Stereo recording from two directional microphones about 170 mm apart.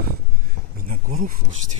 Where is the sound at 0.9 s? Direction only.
50° right (ahead or behind).